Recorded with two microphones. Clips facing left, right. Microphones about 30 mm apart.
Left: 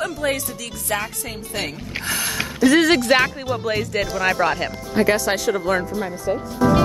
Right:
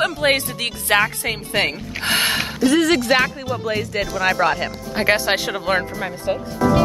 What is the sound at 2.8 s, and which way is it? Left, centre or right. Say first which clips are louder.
Speech: even; centre.